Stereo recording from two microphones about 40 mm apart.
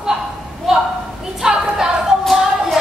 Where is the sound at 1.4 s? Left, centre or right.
Centre.